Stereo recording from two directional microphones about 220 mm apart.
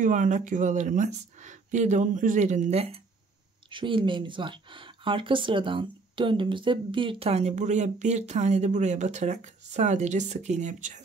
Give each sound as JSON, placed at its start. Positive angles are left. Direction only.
{"t": 0.0, "sound": "speech", "side_deg": -35}